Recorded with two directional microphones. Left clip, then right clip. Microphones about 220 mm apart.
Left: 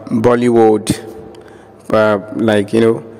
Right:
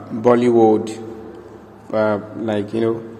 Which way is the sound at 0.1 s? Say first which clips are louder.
Left 3 dB; 55° left (ahead or behind).